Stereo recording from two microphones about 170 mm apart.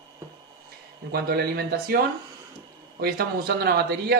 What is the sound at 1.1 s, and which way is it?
Speech, 65° right (ahead or behind).